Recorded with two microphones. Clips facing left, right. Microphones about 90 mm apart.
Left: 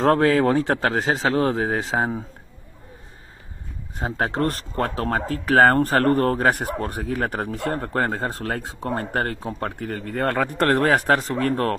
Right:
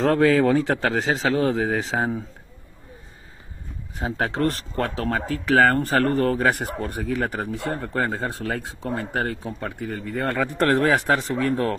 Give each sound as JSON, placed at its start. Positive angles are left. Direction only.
{"t": 0.0, "sound": "speech", "side_deg": 40}
{"t": 4.0, "sound": "speech", "side_deg": 35}
{"t": 9.8, "sound": "speech", "side_deg": 60}